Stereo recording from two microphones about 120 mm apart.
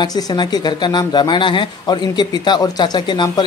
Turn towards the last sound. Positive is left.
turn(degrees=40)  # may be behind; listen again after turning